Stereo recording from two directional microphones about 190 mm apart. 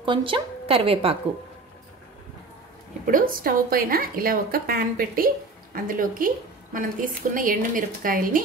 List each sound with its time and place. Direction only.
0.0 s a woman's voice: 25° right (ahead or behind)
3.1 s a woman's voice: 50° right (ahead or behind)